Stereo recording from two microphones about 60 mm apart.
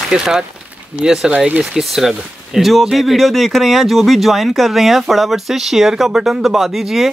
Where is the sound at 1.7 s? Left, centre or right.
Centre.